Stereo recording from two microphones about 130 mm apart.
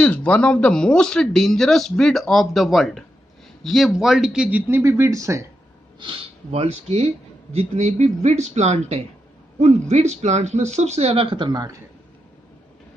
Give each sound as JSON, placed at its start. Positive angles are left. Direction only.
{"t": 0.0, "sound": "speech", "side_deg": 10}
{"t": 5.9, "sound": "speech", "side_deg": -40}